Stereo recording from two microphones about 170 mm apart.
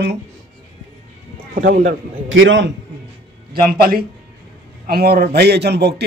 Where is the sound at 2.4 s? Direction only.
90° right.